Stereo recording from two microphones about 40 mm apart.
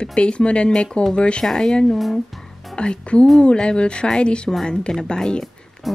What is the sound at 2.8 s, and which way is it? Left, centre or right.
Speech, left.